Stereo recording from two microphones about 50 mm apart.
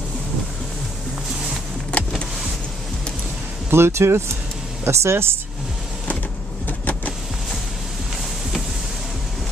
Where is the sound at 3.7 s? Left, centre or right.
Right.